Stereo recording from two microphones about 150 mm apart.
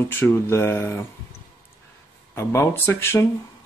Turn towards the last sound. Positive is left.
turn(degrees=15)  # may be behind; listen again after turning